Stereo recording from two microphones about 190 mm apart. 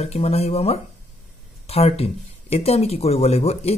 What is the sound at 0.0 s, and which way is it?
Speech, 35° left (ahead or behind).